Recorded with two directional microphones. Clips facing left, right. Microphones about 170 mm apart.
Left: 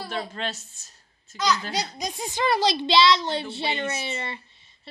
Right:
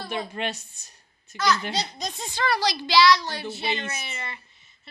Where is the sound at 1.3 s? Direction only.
15° left (ahead or behind).